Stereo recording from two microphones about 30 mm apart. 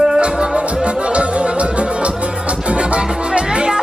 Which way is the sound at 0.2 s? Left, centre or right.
Right.